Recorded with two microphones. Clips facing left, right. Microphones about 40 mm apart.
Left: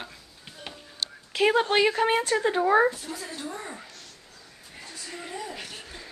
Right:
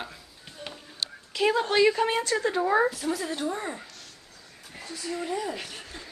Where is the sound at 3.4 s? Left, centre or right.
Right.